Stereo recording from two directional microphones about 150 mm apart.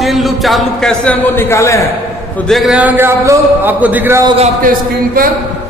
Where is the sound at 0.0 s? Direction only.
Centre (ahead or behind).